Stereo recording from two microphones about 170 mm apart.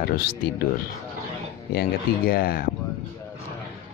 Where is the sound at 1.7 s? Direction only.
65° left (ahead or behind).